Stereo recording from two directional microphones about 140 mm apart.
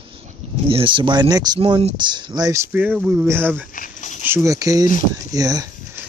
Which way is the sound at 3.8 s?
65° left (ahead or behind).